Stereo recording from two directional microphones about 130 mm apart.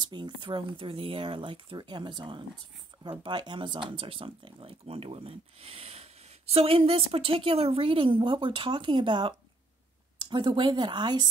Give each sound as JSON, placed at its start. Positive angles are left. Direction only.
{"t": 0.1, "sound": "speech", "side_deg": -40}
{"t": 10.3, "sound": "speech", "side_deg": -35}